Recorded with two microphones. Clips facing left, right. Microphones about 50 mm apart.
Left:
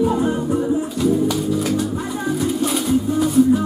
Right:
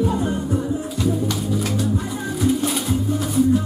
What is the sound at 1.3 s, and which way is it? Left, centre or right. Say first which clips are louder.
Speech: left 3 dB; centre.